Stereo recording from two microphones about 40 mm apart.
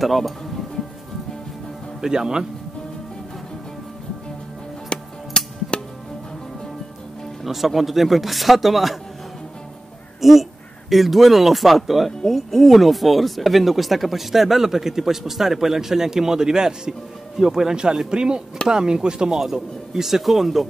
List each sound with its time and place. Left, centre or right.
0.0 s speech: centre
2.0 s speech: centre
4.8 s music: left
7.4 s speech: centre
10.2 s speech: centre; by 19.3 s right
19.3 s speech: centre